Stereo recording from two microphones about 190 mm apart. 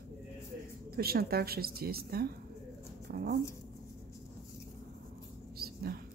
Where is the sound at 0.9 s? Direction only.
55° right (ahead or behind).